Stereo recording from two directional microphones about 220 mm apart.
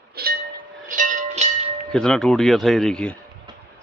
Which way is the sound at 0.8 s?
35° right (ahead or behind).